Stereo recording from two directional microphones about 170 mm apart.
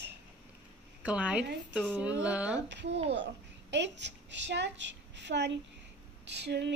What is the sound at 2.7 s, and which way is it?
Child singing, 90° right.